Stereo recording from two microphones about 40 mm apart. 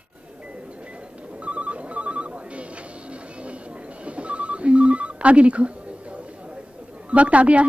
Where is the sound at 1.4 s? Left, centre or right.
Right.